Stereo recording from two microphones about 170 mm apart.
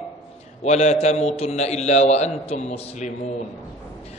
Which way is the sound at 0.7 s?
40° left (ahead or behind).